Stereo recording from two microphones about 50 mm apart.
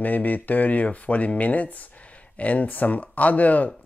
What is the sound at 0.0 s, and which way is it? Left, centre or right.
Speech, left.